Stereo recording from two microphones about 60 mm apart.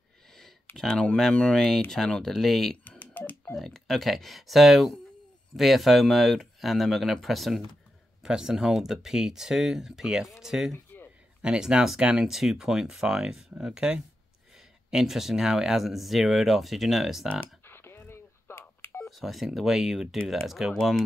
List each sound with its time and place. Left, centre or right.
0.7 s speech: centre
3.2 s music: left
3.5 s speech: centre
8.2 s speech: centre
10.9 s a sound: left
11.4 s speech: centre
17.6 s telephone dialing: left
19.0 s speech: centre